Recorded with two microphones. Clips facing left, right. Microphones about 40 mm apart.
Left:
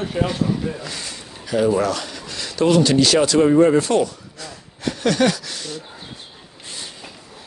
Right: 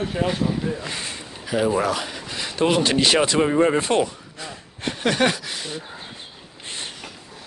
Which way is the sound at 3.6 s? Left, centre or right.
Right.